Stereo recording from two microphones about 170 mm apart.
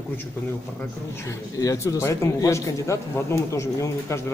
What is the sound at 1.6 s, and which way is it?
Speech, 20° left (ahead or behind).